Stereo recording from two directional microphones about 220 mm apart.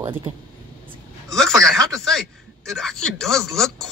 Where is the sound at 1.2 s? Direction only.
Centre (ahead or behind).